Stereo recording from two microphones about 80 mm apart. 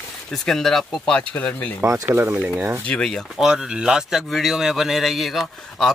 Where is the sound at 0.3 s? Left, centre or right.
Centre.